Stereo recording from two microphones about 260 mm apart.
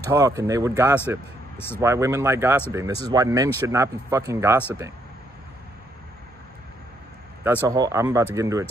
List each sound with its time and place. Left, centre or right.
0.0 s speech: centre
7.6 s speech: centre